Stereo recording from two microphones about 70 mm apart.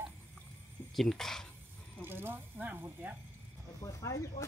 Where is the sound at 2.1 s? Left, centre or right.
Right.